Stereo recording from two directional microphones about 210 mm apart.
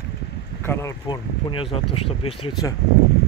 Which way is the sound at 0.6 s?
10° left (ahead or behind).